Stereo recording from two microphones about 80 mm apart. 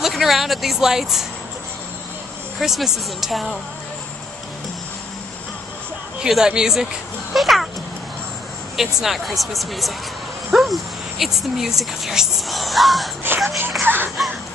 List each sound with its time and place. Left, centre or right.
0.0 s speech: centre
2.6 s speech: centre
6.1 s speech: centre
9.0 s speech: centre
13.6 s speech: right